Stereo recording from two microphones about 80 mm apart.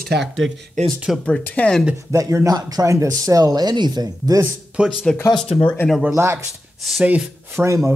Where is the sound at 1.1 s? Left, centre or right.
Centre.